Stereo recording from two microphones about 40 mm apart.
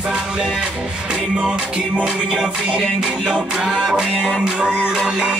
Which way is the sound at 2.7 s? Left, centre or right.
Right.